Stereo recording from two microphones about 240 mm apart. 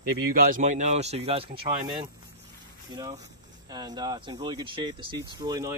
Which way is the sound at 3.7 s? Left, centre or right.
Centre.